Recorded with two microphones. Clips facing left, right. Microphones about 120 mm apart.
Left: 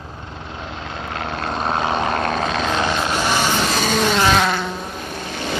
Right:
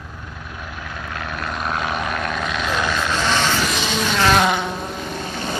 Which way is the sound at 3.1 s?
15° left (ahead or behind).